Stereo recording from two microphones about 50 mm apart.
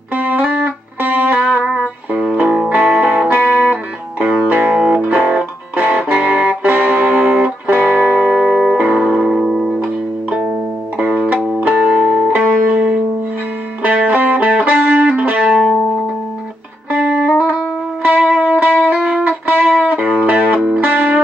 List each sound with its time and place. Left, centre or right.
0.1 s music: right
8.2 s music: centre
9.4 s music: centre
11.0 s music: right
15.4 s music: centre
16.9 s music: right